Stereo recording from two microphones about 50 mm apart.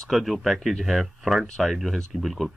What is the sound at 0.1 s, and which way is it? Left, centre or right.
Speech, centre.